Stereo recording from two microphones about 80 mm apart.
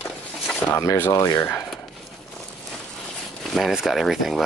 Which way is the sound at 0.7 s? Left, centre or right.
Left.